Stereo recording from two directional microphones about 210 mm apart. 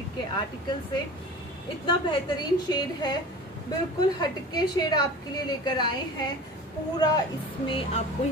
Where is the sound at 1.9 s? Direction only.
20° left (ahead or behind).